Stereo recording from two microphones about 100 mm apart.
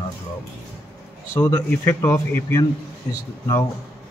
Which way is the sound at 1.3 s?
25° left (ahead or behind).